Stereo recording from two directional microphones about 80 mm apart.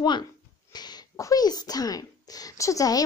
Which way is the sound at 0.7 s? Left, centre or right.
Left.